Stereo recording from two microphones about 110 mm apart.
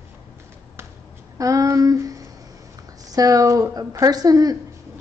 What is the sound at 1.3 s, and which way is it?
Speech, 30° right (ahead or behind).